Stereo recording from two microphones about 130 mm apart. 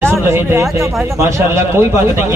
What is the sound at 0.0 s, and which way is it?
Speech, 20° right (ahead or behind).